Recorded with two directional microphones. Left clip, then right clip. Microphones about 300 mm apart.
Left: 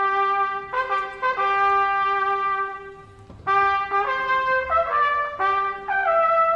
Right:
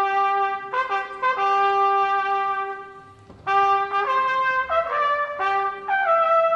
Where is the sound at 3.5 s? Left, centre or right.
Right.